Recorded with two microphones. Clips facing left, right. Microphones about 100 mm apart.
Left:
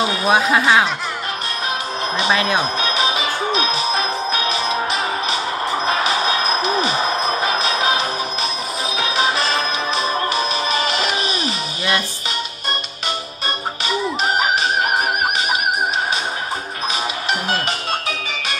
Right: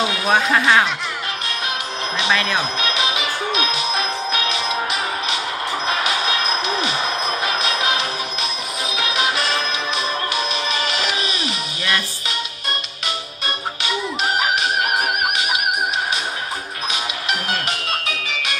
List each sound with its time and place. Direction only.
0.0 s speech: centre (ahead or behind)
2.1 s speech: 35° left (ahead or behind)
3.9 s music: centre (ahead or behind)
6.2 s music: centre (ahead or behind)
8.9 s music: centre (ahead or behind)
14.6 s music: centre (ahead or behind)
17.3 s music: centre (ahead or behind)